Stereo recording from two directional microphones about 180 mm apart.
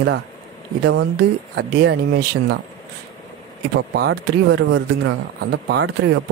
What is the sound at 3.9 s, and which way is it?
Speech, 65° right (ahead or behind).